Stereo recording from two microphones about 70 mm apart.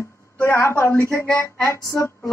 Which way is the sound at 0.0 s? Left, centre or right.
Left.